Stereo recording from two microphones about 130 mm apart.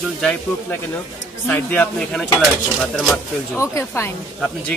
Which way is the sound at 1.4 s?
15° left (ahead or behind).